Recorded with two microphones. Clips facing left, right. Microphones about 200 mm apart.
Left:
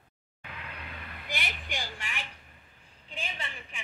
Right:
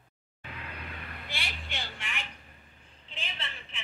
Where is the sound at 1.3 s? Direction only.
15° left (ahead or behind).